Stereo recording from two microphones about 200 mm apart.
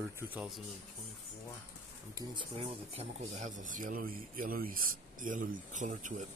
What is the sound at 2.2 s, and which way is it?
Speech, 25° right (ahead or behind).